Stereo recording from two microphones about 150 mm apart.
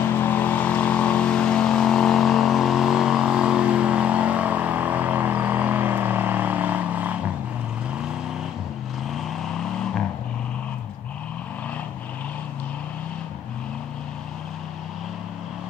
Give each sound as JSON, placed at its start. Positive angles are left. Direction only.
{"t": 0.1, "sound": "vehicle", "side_deg": 15}